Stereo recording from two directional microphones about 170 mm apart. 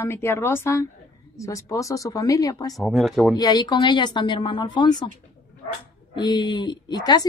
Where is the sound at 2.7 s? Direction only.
Centre (ahead or behind).